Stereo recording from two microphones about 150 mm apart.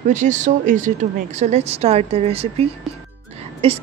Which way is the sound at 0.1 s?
55° right (ahead or behind).